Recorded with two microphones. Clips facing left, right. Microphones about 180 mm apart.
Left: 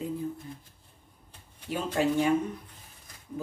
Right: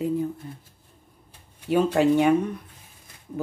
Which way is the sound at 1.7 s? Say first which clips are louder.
Right 8 dB; 70° right (ahead or behind).